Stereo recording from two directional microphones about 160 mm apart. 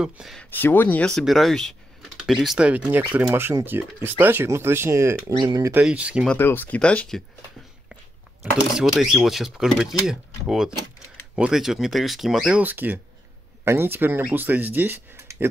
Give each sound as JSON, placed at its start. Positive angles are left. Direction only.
{"t": 0.0, "sound": "speech", "side_deg": 0}
{"t": 0.6, "sound": "speech", "side_deg": 10}
{"t": 5.9, "sound": "speech", "side_deg": -5}
{"t": 6.2, "sound": "speech", "side_deg": 15}
{"t": 8.7, "sound": "speech", "side_deg": 0}